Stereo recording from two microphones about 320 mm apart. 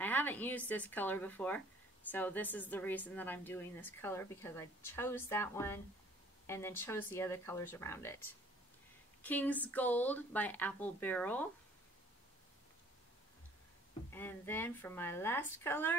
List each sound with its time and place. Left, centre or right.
0.0 s a woman's voice: centre
14.1 s a woman's voice: centre